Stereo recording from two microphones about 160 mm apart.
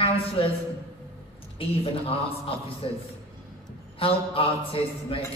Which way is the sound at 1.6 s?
35° left (ahead or behind).